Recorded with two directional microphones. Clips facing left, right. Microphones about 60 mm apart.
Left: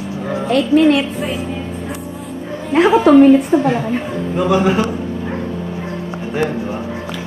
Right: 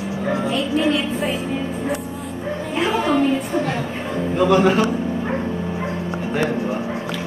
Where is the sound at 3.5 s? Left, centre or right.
Left.